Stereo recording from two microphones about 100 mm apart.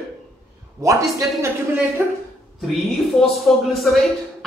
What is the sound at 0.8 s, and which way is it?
Speech, 35° right (ahead or behind).